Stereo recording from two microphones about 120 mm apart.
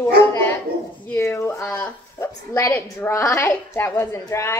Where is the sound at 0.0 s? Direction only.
25° left (ahead or behind).